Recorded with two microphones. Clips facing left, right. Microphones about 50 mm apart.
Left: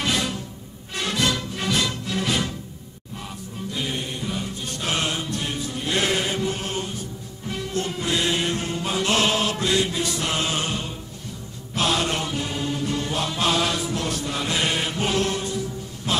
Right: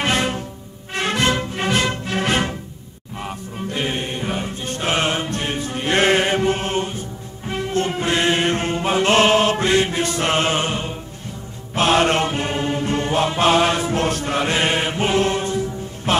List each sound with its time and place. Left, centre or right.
0.0 s music: right
11.7 s mantra: right
16.1 s music: right